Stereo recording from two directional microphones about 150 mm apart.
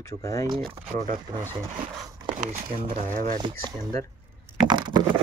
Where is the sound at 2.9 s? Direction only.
60° right (ahead or behind).